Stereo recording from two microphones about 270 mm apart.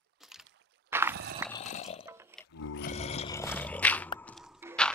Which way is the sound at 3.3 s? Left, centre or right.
Centre.